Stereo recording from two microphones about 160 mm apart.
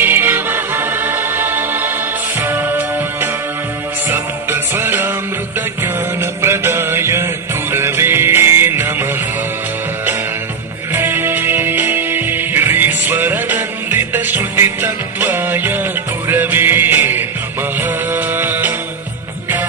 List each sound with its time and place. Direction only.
0.0 s music: 15° right (ahead or behind)
6.4 s mantra: 15° right (ahead or behind)
7.7 s music: 15° right (ahead or behind)
10.9 s music: 15° right (ahead or behind)